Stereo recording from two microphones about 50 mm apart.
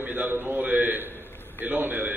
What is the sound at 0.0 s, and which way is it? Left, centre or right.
A man's voice, right.